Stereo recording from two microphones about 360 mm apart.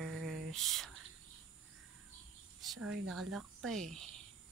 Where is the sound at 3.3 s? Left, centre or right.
Centre.